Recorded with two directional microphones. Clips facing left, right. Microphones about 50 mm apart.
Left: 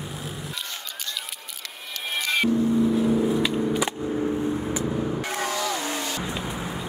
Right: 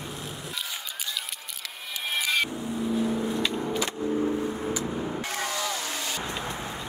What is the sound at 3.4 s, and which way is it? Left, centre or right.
Skateboard, centre.